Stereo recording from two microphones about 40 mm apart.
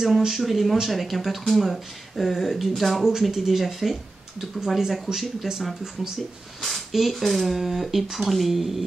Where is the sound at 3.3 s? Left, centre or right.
Centre.